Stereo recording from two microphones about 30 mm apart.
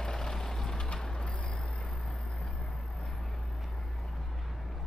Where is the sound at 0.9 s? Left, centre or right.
Centre.